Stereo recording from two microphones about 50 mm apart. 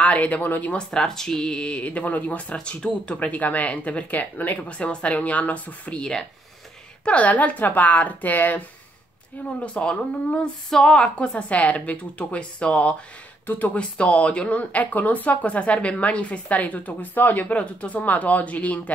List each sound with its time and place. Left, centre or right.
0.0 s speech: left
0.7 s speech: centre; by 2.4 s left
2.5 s speech: centre
7.1 s speech: left
9.8 s speech: left